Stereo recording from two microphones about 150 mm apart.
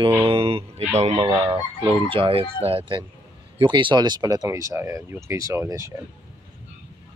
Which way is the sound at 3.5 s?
30° right (ahead or behind).